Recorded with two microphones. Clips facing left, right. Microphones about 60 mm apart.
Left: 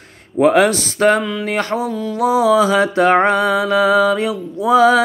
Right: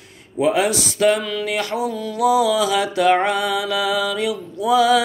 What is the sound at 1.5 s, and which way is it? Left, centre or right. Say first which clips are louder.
Mantra: left 3 dB; left.